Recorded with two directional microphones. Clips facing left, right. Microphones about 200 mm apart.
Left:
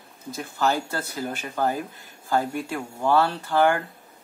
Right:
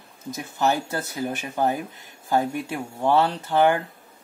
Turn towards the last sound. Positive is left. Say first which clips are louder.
# right 1 dB
turn(degrees=-20)  # may be behind; listen again after turning